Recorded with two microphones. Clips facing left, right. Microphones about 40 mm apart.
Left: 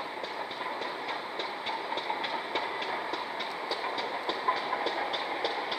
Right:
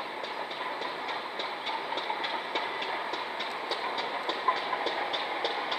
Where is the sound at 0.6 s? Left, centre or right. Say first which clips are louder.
Even; centre.